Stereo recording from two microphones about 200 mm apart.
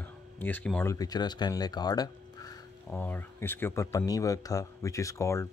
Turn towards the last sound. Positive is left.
turn(degrees=15)  # may be behind; listen again after turning